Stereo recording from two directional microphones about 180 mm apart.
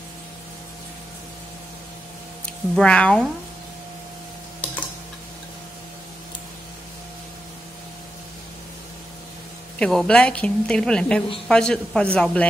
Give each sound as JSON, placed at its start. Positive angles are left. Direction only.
{"t": 2.4, "sound": "speech", "side_deg": 5}
{"t": 9.8, "sound": "a woman's voice", "side_deg": 5}